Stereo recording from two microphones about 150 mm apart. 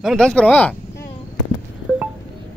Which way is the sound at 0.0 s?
Centre (ahead or behind).